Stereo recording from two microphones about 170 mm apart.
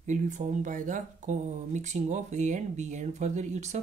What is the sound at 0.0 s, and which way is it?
Speech, 45° right (ahead or behind).